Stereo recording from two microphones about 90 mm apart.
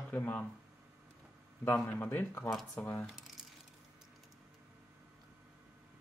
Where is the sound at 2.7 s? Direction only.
15° left (ahead or behind).